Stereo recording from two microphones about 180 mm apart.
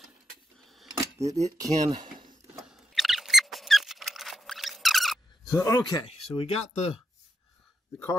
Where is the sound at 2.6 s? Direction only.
Centre (ahead or behind).